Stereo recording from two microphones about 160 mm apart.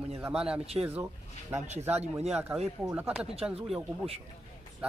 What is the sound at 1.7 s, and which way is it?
Speech, 45° right (ahead or behind).